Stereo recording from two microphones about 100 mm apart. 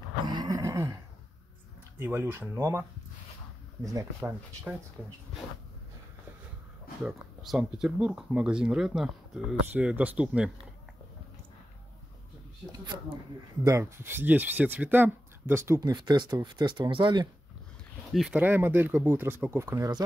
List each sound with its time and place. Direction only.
0.3 s a sound: 45° right (ahead or behind)
0.6 s speech: 30° right (ahead or behind)
2.0 s speech: 20° right (ahead or behind)
3.8 s speech: 35° right (ahead or behind)
7.0 s speech: 5° right (ahead or behind)
12.8 s speech: 50° right (ahead or behind)
13.7 s speech: 30° right (ahead or behind)
15.8 s speech: 45° right (ahead or behind)
18.3 s speech: 20° right (ahead or behind)